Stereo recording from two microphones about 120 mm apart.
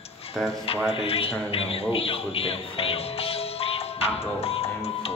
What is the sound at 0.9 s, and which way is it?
A man's voice, 50° left (ahead or behind).